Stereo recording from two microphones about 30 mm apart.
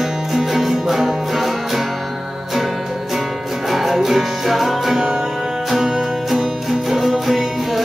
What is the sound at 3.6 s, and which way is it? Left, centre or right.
Music, centre.